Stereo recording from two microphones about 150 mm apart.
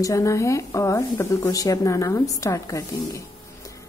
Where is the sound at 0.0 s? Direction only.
20° left (ahead or behind).